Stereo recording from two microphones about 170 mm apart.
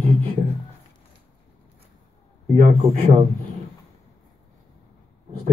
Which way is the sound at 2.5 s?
45° right (ahead or behind).